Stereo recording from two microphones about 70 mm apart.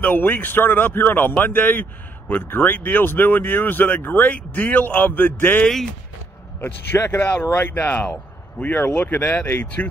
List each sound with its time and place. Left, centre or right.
0.0 s speech: left
7.0 s speech: left